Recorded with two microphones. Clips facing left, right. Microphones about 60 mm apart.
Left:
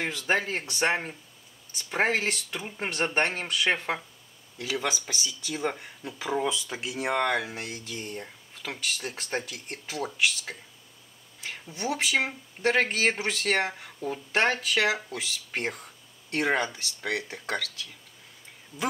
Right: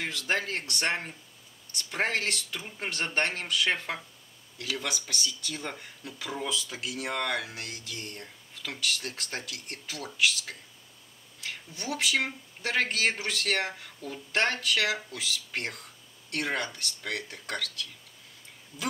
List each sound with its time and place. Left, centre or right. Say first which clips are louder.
0.0 s speech: left 3 dB; centre